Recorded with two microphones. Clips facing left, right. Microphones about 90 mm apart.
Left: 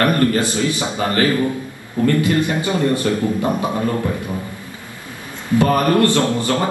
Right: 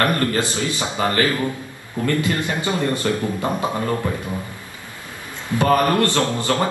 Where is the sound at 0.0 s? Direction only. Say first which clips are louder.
Left 4 dB; 20° left (ahead or behind).